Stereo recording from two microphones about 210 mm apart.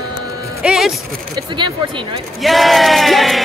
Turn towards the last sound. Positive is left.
turn(degrees=0)  # may be behind; listen again after turning